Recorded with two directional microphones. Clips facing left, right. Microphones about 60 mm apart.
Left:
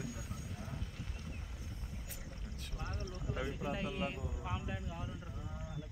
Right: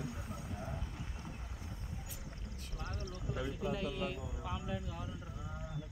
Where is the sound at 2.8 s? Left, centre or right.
Left.